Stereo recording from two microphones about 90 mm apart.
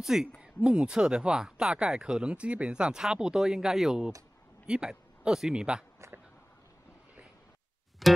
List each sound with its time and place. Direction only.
0.0 s speech: 5° right (ahead or behind)
5.9 s a sound: 30° right (ahead or behind)
8.0 s music: centre (ahead or behind)